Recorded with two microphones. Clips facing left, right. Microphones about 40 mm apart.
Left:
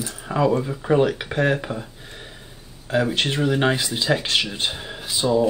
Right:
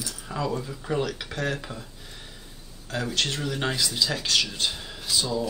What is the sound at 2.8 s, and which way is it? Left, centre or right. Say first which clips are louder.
Speech: left 7 dB; left.